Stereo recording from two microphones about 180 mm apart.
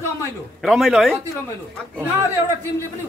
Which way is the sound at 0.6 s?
Centre (ahead or behind).